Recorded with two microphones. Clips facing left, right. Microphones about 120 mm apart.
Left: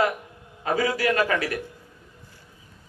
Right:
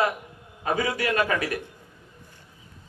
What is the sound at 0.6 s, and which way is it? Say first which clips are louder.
Speech: left 2 dB; 25° right (ahead or behind).